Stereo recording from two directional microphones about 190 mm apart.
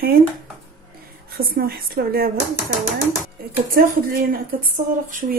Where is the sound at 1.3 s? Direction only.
50° right (ahead or behind).